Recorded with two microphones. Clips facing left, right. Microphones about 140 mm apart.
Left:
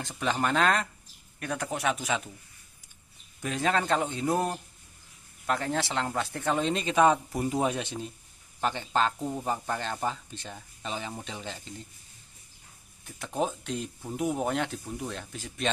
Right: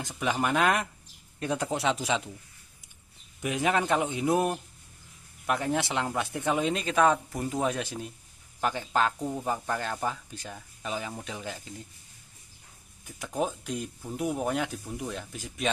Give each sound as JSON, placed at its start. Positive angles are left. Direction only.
{"t": 0.2, "sound": "a man's voice", "side_deg": -10}
{"t": 3.3, "sound": "a man's voice", "side_deg": -15}
{"t": 13.0, "sound": "speech", "side_deg": -5}